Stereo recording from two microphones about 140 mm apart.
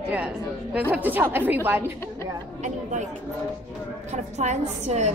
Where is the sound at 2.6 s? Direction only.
60° right (ahead or behind).